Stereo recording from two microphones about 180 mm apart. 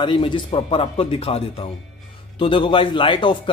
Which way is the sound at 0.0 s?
25° left (ahead or behind).